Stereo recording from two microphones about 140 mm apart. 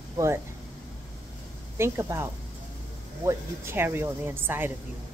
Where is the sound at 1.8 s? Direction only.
20° right (ahead or behind).